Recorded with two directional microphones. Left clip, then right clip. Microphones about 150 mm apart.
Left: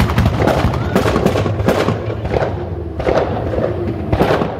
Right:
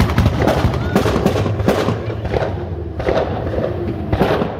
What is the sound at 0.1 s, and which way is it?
Music, centre (ahead or behind).